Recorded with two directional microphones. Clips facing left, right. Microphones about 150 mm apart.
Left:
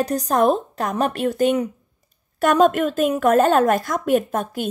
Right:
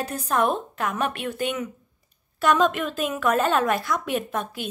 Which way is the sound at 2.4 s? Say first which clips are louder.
Left 5 dB; 50° left (ahead or behind).